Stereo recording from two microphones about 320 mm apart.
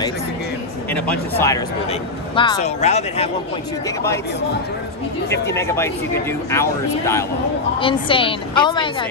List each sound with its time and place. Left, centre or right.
0.9 s speech: centre
5.5 s speech: centre